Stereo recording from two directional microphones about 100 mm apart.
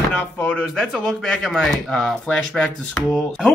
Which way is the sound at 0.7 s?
5° left (ahead or behind).